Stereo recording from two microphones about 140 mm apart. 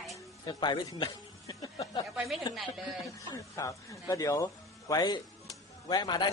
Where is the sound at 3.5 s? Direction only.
25° left (ahead or behind).